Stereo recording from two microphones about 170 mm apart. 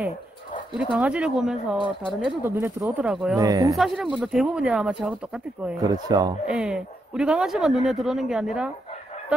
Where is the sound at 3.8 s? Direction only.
5° right (ahead or behind).